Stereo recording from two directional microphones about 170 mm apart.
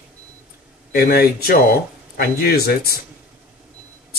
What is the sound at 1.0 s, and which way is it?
Speech, 65° left (ahead or behind).